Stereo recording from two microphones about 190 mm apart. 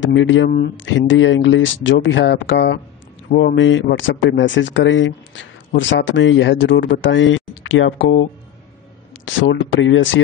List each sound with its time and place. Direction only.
0.0 s speech: 90° left